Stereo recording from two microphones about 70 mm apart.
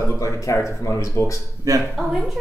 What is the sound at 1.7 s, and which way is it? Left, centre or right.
Speech, right.